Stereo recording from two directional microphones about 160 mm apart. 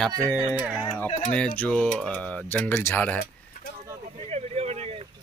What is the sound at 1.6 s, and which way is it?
Speech, 5° left (ahead or behind).